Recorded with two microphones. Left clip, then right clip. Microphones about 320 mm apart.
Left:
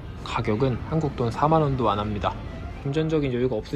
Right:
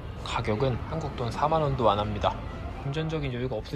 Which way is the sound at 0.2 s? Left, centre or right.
Centre.